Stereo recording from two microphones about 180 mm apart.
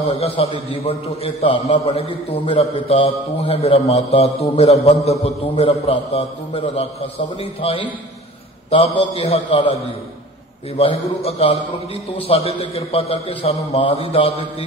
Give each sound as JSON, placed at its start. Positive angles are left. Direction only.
{"t": 0.1, "sound": "a man's voice", "side_deg": 35}
{"t": 10.8, "sound": "a man's voice", "side_deg": 35}